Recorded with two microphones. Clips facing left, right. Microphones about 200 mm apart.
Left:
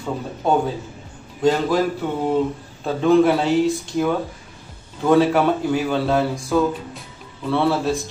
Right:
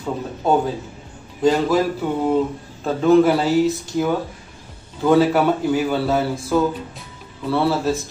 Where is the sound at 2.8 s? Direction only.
Centre (ahead or behind).